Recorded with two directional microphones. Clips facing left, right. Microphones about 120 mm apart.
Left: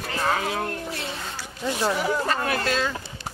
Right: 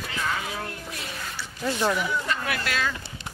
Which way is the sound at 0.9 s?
30° left (ahead or behind).